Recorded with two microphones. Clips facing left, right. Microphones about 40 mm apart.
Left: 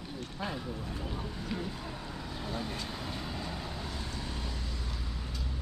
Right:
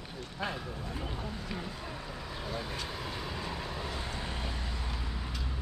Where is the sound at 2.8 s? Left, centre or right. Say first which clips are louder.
Right 1 dB; right.